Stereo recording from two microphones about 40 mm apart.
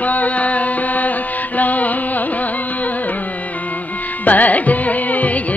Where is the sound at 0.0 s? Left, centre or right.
Left.